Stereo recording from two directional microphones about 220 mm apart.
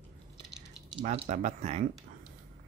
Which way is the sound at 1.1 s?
30° right (ahead or behind).